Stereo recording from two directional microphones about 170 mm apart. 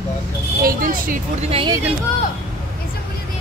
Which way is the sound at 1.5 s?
30° right (ahead or behind).